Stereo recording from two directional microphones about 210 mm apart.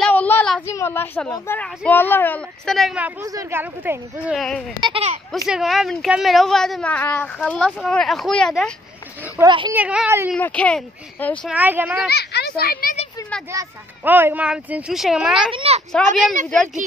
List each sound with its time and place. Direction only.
0.0 s speech: 5° left (ahead or behind)
3.3 s speech: 15° right (ahead or behind)
4.4 s speech: 5° left (ahead or behind)
4.7 s speech: 25° right (ahead or behind)
5.5 s speech: centre (ahead or behind)
9.4 s speech: 20° right (ahead or behind)
9.8 s speech: 5° right (ahead or behind)
10.3 s speech: 5° left (ahead or behind)
11.5 s speech: 10° right (ahead or behind)
12.1 s a child's voice: 50° left (ahead or behind)
13.5 s speech: 10° right (ahead or behind)
15.5 s speech: 30° right (ahead or behind)